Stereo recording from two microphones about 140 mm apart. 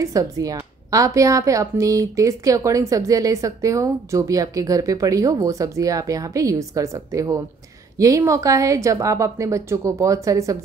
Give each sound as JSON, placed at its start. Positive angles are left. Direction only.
{"t": 0.0, "sound": "a woman's voice", "side_deg": -25}